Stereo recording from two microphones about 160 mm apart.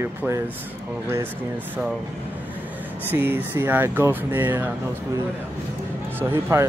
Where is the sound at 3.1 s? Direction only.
15° right (ahead or behind).